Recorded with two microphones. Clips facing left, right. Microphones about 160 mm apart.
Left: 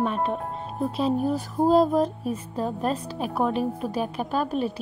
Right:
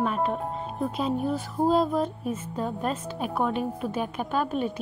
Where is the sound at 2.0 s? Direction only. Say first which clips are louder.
Left 3 dB; 35° left (ahead or behind).